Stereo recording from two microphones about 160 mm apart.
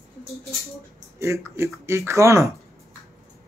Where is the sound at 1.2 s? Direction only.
15° right (ahead or behind).